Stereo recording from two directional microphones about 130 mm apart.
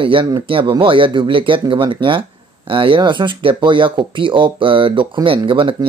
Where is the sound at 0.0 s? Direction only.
40° right (ahead or behind).